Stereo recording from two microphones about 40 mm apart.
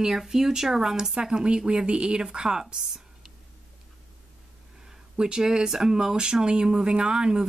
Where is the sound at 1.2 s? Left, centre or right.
Right.